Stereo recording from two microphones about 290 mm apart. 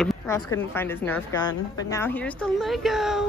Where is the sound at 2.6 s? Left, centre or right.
Centre.